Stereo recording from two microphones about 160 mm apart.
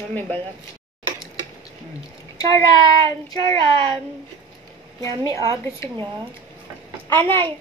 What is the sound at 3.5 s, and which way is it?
Child singing, 35° right (ahead or behind).